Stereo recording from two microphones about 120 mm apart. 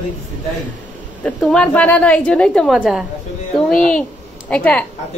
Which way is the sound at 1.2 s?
5° left (ahead or behind).